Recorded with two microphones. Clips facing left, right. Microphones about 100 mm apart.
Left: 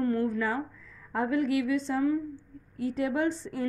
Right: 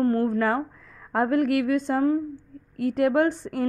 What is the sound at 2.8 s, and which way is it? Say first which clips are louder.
Speech: right 7 dB; 65° right (ahead or behind).